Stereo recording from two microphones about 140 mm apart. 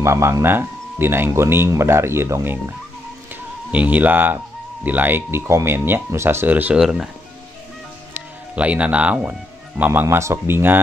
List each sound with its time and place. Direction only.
0.0 s speech: 20° right (ahead or behind)
3.7 s speech: 10° right (ahead or behind)
8.1 s speech: 10° right (ahead or behind)